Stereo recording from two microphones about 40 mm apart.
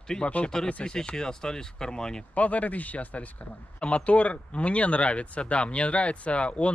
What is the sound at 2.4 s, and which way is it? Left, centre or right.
Speech, left.